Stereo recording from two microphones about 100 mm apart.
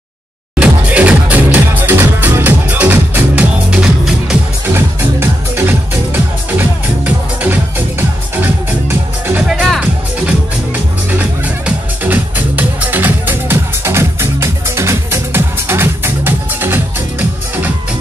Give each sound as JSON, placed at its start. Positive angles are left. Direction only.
{"t": 0.6, "sound": "music", "side_deg": -15}
{"t": 4.7, "sound": "music", "side_deg": -20}
{"t": 9.5, "sound": "music", "side_deg": -5}